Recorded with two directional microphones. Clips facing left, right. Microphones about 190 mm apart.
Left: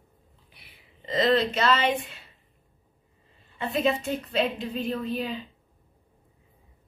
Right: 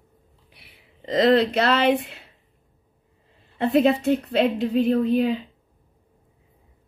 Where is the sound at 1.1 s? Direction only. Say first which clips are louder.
Right 5 dB; 65° right (ahead or behind).